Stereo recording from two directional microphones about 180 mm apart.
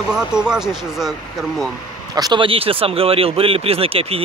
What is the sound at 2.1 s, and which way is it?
Speech, 25° right (ahead or behind).